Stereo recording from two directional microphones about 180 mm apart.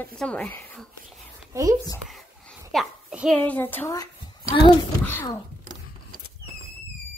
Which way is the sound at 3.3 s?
10° left (ahead or behind).